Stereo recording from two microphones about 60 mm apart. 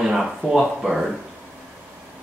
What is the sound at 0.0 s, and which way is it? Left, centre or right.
Speech, centre.